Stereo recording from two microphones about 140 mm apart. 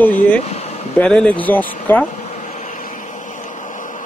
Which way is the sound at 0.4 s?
50° left (ahead or behind).